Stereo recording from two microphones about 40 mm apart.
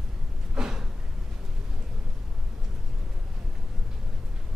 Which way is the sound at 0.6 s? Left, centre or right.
Centre.